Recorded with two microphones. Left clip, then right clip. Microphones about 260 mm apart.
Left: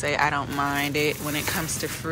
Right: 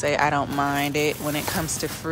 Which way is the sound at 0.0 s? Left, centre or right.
Centre.